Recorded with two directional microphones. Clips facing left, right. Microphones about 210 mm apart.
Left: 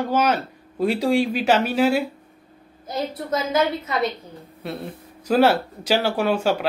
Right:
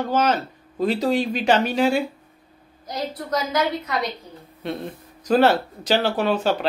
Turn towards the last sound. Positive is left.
turn(degrees=10)  # may be behind; listen again after turning